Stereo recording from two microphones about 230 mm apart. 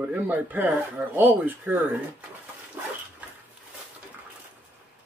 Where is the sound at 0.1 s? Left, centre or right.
Centre.